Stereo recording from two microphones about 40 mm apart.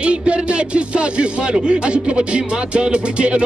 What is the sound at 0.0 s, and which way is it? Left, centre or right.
Music, right.